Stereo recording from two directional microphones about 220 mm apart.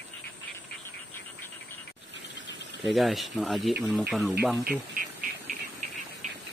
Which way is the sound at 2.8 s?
Centre (ahead or behind).